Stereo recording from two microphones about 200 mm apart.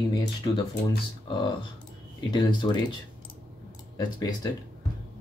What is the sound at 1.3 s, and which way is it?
Speech, 25° left (ahead or behind).